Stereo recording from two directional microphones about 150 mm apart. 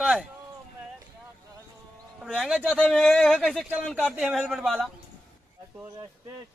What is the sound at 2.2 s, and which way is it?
A man's voice, centre (ahead or behind).